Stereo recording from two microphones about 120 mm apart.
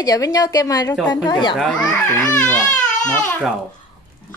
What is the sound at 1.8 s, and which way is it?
Speech, 10° left (ahead or behind).